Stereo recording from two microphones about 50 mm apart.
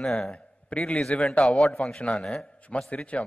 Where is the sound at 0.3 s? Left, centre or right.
Left.